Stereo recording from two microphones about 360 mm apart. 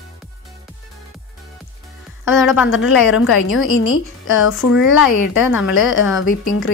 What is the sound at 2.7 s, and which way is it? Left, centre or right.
A woman's voice, left.